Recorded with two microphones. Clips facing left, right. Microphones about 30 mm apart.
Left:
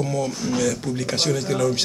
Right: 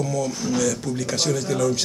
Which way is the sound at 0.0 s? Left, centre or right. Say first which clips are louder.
Even; left.